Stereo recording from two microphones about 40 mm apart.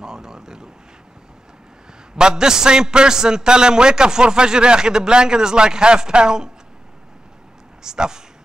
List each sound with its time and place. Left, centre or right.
0.0 s speech: centre
2.1 s a man's voice: centre
7.8 s speech: centre